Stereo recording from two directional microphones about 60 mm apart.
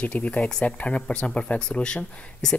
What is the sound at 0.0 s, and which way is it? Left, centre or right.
Speech, left.